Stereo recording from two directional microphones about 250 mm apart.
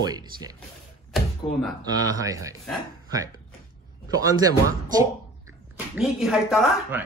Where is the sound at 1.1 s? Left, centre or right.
Centre.